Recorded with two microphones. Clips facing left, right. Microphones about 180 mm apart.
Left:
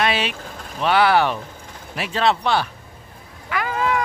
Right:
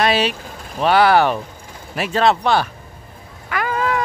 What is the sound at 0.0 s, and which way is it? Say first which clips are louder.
Speech: right 4 dB; 40° right (ahead or behind).